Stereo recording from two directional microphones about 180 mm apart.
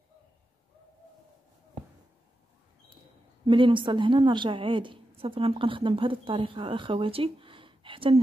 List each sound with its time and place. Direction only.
3.4 s a woman's voice: 30° right (ahead or behind)